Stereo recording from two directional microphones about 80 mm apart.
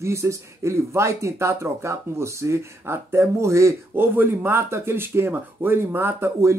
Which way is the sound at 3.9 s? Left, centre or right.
Right.